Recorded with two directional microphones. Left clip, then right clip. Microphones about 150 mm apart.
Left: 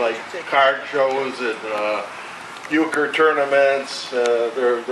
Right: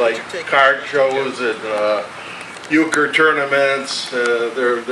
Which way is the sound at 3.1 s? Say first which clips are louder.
Even; 25° right (ahead or behind).